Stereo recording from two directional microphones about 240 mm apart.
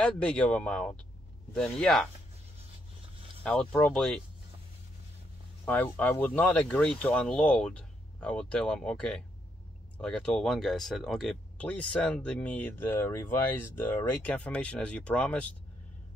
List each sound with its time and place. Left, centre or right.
0.0 s speech: centre
3.4 s speech: centre
5.7 s speech: centre